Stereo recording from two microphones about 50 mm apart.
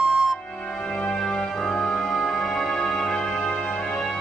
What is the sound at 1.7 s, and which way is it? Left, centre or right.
Music, centre.